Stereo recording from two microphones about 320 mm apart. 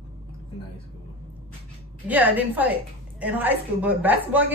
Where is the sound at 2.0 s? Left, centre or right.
Centre.